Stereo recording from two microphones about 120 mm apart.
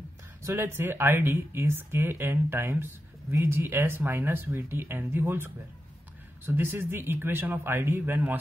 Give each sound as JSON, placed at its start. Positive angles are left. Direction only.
{"t": 0.4, "sound": "speech", "side_deg": -20}